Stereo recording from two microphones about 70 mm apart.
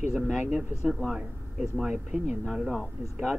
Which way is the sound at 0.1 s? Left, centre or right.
Centre.